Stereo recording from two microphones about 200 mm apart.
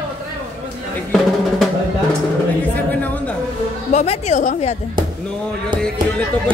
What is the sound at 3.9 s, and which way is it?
Speech, 35° left (ahead or behind).